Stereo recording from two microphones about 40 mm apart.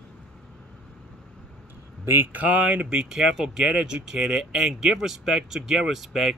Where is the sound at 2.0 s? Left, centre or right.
Right.